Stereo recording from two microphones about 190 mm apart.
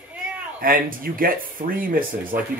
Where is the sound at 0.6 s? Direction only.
50° right (ahead or behind).